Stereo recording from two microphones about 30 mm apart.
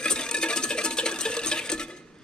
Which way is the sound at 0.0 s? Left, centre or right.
Left.